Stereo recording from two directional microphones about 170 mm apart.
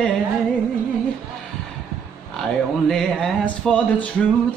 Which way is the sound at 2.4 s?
Centre (ahead or behind).